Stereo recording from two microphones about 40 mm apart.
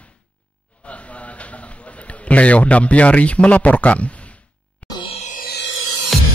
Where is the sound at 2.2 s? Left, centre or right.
Left.